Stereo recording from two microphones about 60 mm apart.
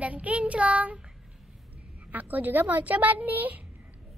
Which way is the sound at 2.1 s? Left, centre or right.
Right.